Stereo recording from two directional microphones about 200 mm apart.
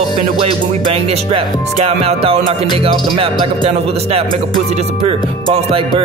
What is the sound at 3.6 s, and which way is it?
Music, 30° right (ahead or behind).